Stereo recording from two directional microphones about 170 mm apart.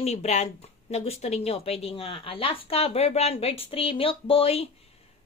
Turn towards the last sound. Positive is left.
turn(degrees=35)  # may be behind; listen again after turning